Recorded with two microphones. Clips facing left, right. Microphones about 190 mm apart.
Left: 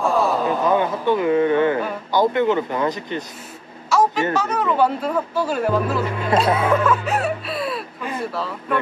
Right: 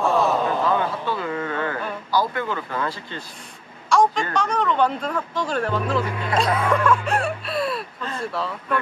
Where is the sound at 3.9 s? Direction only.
5° left (ahead or behind).